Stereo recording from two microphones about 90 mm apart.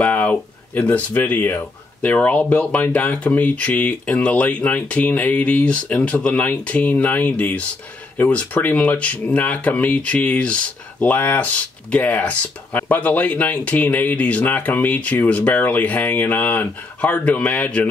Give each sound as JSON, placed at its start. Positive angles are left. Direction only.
{"t": 0.0, "sound": "speech", "side_deg": 15}